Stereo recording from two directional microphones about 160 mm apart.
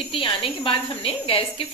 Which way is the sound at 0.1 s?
35° left (ahead or behind).